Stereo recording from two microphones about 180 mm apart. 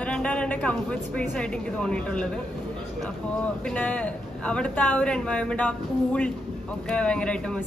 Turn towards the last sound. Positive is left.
turn(degrees=5)  # may be behind; listen again after turning